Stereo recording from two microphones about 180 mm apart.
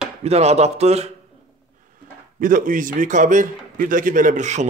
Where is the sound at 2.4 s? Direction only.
50° right (ahead or behind).